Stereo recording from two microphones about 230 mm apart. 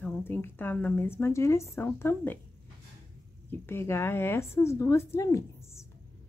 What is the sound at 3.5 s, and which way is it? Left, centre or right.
Speech, centre.